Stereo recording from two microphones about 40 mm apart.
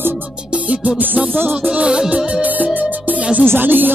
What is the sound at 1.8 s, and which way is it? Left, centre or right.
Music, centre.